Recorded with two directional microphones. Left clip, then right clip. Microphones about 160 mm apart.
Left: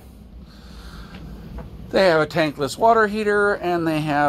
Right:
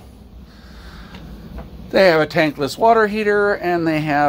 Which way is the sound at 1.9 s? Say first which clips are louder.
Right 3 dB; 15° right (ahead or behind).